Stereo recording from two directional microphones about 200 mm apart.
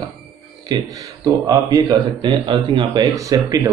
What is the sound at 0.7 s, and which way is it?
Speech, 15° right (ahead or behind).